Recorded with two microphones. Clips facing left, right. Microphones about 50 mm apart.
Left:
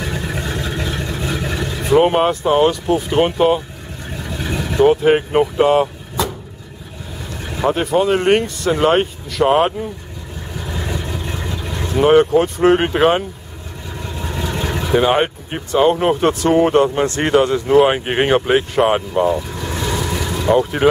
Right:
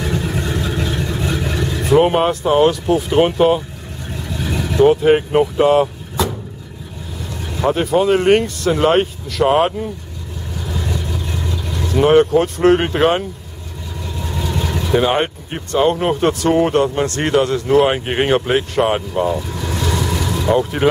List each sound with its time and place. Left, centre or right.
0.0 s vehicle: centre
7.5 s speech: centre
10.6 s vehicle: centre
11.9 s speech: centre
14.0 s speech: centre